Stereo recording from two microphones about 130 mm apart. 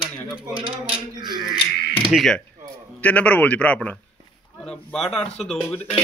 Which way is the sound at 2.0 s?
Centre (ahead or behind).